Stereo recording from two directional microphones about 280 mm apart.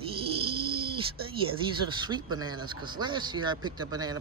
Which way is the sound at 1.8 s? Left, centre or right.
Centre.